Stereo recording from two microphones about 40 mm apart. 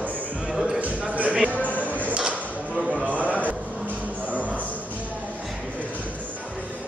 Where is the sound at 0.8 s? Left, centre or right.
Right.